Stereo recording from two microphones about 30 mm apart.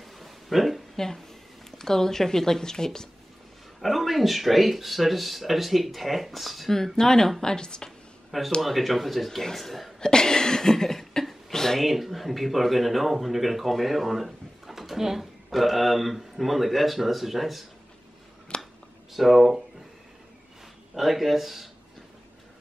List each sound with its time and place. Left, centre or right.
0.0 s a sound: centre
0.9 s a woman's voice: centre
3.8 s speech: centre
7.0 s a woman's voice: centre
7.4 s a woman's voice: left
8.5 s speech: centre
9.9 s chuckle: left
11.5 s a sound: centre
11.8 s speech: centre
18.5 s a sound: left
19.1 s speech: centre
20.9 s speech: centre